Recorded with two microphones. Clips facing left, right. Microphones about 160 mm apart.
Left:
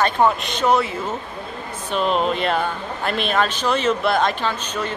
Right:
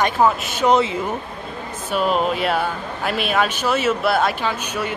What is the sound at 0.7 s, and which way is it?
Speech, 20° right (ahead or behind).